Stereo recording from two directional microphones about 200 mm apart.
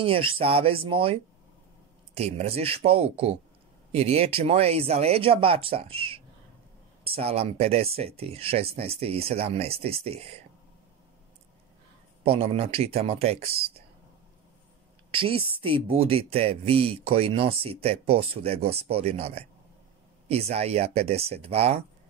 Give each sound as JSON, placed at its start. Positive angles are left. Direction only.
{"t": 0.0, "sound": "speech", "side_deg": -25}
{"t": 12.2, "sound": "speech", "side_deg": -30}
{"t": 15.1, "sound": "speech", "side_deg": -25}